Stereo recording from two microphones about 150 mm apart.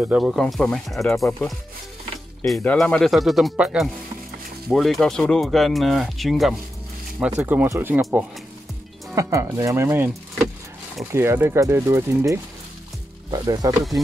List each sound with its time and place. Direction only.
0.0 s speech: 5° right (ahead or behind)
2.6 s speech: 10° left (ahead or behind); by 10.1 s 15° right (ahead or behind)
11.1 s speech: 15° right (ahead or behind)